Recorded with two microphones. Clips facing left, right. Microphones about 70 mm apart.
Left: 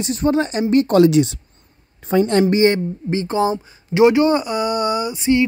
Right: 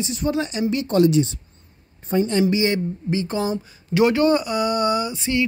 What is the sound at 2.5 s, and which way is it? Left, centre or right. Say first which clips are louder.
Speech: left 5 dB; left.